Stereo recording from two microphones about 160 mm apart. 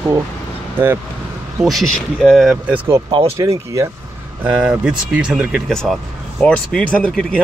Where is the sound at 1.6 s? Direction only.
Centre (ahead or behind).